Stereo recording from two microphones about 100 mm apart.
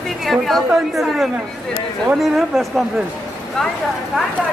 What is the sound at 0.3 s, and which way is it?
A man's voice, centre (ahead or behind).